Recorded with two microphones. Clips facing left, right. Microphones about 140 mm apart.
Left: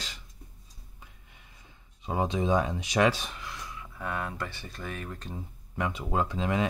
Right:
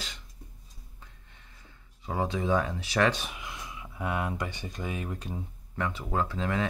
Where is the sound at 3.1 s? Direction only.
5° right (ahead or behind).